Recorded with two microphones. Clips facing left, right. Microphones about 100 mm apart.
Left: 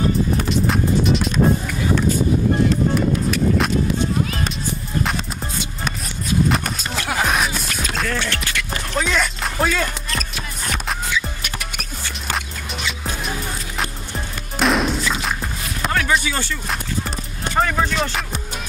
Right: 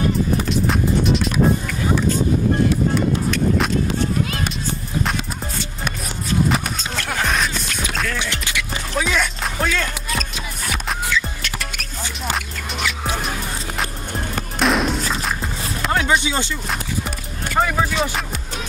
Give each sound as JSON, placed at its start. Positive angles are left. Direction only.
{"t": 0.5, "sound": "music", "side_deg": 0}
{"t": 3.3, "sound": "a sound", "side_deg": 0}
{"t": 6.5, "sound": "music", "side_deg": 0}
{"t": 8.2, "sound": "music", "side_deg": -15}
{"t": 11.1, "sound": "music", "side_deg": 15}
{"t": 12.3, "sound": "music", "side_deg": 0}
{"t": 14.6, "sound": "music", "side_deg": 0}
{"t": 15.9, "sound": "music", "side_deg": -25}
{"t": 17.6, "sound": "a sound", "side_deg": -5}